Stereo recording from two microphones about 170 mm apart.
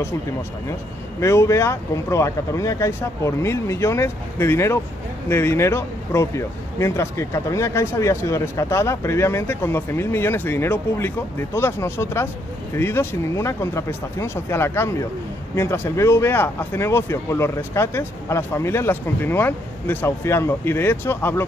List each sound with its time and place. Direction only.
1.2 s speech: 15° left (ahead or behind)